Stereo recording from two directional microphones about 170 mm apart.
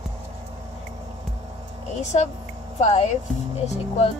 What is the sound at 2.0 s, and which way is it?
Speech, 40° left (ahead or behind).